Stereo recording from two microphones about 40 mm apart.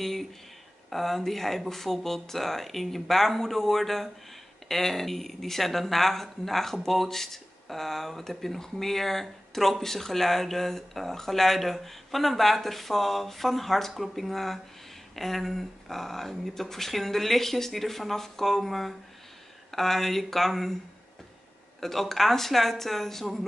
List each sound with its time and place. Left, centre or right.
0.0 s speech: centre
21.7 s speech: centre